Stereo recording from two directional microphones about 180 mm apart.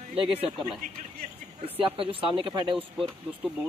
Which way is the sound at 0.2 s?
30° right (ahead or behind).